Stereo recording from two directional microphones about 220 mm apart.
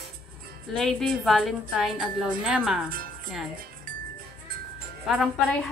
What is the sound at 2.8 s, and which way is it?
Music, 40° right (ahead or behind).